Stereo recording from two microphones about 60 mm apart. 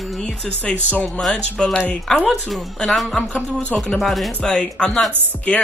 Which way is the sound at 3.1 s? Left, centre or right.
Left.